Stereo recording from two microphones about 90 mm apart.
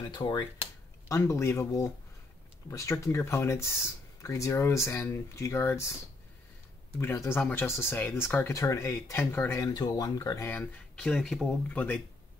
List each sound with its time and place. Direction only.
0.1 s speech: 55° left (ahead or behind)
1.0 s speech: 30° left (ahead or behind)
7.0 s speech: 25° left (ahead or behind)
9.7 s speech: 45° left (ahead or behind)
11.0 s speech: 10° left (ahead or behind)
11.7 s speech: 20° left (ahead or behind)